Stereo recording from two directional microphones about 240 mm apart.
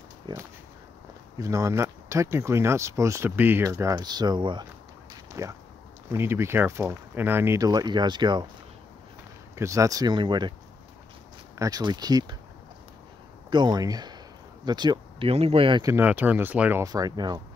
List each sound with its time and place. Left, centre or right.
0.3 s speech: centre
9.6 s speech: centre
11.5 s speech: centre
13.5 s speech: centre